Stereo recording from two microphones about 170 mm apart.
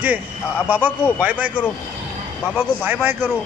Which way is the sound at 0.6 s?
10° right (ahead or behind).